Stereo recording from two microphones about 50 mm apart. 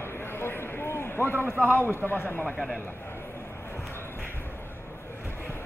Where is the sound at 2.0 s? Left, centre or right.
Left.